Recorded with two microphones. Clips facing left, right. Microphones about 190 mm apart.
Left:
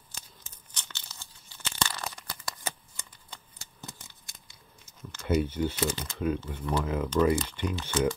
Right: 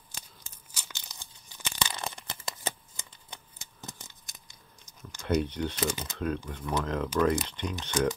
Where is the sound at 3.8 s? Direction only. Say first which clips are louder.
Right 1 dB; 20° right (ahead or behind).